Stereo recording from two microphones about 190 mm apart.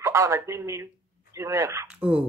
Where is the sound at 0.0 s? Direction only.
15° right (ahead or behind).